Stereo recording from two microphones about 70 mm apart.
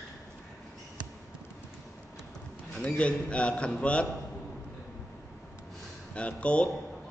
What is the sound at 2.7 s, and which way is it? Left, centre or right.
A man's voice, centre.